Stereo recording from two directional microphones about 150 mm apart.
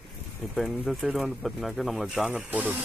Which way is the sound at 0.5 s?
Centre (ahead or behind).